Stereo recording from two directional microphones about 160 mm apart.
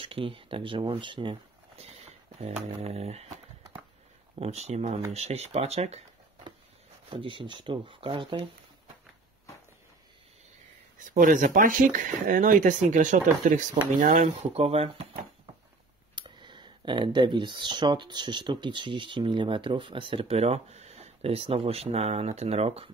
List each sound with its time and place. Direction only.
0.0 s speech: 35° right (ahead or behind)
4.4 s speech: 45° right (ahead or behind)
7.1 s speech: 30° right (ahead or behind)
11.0 s speech: 55° right (ahead or behind)
14.5 s speech: 40° right (ahead or behind)
16.2 s speech: 30° right (ahead or behind)